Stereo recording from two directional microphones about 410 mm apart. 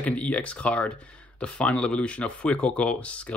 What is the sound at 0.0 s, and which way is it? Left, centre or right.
Speech, centre.